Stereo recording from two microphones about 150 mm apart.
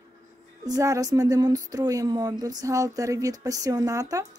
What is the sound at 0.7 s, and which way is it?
Speech, 25° right (ahead or behind).